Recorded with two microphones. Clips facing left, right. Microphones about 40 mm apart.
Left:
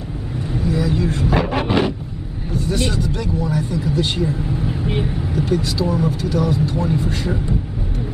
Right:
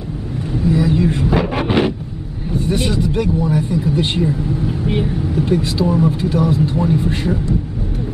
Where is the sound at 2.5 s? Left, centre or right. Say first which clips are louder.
Right 3 dB; right.